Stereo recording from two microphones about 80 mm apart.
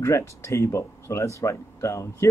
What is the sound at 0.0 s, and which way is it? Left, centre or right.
Speech, left.